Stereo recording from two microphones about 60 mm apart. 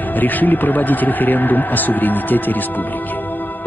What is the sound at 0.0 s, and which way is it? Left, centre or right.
A man's voice, left.